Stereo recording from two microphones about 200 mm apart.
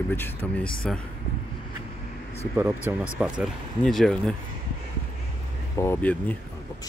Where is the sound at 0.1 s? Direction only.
10° left (ahead or behind).